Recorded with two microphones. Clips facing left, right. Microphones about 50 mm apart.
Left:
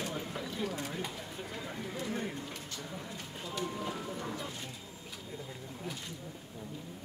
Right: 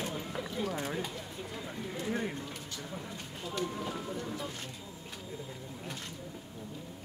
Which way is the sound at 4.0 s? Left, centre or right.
Centre.